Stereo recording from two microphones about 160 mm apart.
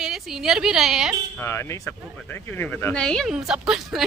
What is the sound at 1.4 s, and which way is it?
Speech, 15° left (ahead or behind).